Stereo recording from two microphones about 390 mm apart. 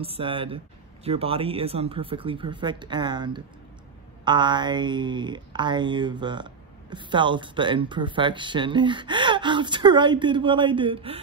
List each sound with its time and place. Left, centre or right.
0.0 s speech: centre